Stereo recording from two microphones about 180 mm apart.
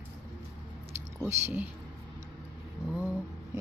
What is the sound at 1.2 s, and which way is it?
Speech, 10° right (ahead or behind).